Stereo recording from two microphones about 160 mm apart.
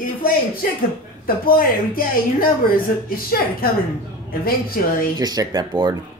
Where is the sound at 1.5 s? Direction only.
65° left (ahead or behind).